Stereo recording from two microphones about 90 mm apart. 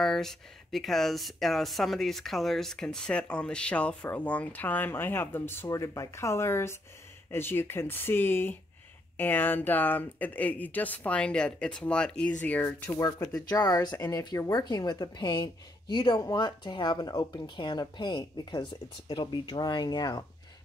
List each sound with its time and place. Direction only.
0.0 s speech: 5° left (ahead or behind); by 13.0 s 25° left (ahead or behind)
13.0 s a woman's voice: 45° left (ahead or behind)